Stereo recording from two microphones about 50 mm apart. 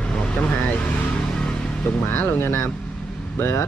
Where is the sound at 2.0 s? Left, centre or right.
Left.